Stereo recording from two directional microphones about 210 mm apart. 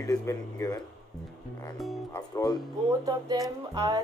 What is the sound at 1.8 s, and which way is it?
Speech, centre (ahead or behind).